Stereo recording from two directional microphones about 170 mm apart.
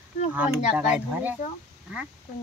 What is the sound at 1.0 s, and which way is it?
Speech, 10° right (ahead or behind).